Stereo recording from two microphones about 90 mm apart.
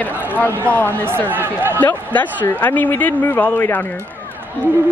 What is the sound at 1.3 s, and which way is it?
Speech, 25° right (ahead or behind).